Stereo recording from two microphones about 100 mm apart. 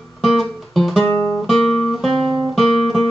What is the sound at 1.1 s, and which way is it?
Guitar, 25° left (ahead or behind).